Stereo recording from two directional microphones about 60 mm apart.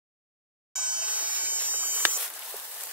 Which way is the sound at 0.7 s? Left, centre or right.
Centre.